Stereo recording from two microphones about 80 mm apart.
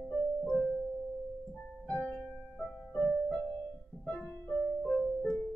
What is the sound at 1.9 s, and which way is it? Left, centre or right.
Music, centre.